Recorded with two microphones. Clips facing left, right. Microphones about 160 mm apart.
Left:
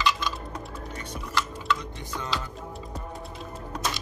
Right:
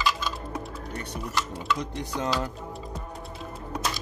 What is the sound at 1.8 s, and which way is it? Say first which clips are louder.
Speech: right 5 dB; 75° right (ahead or behind).